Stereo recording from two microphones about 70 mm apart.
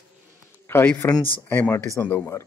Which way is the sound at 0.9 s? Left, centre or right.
Centre.